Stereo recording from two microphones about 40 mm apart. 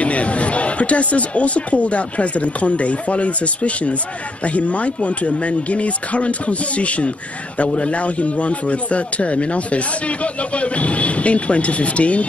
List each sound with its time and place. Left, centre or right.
0.0 s a man's voice: left